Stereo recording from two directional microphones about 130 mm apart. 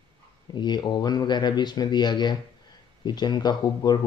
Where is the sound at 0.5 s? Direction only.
35° left (ahead or behind).